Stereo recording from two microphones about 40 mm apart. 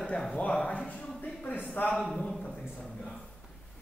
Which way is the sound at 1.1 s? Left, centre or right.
Left.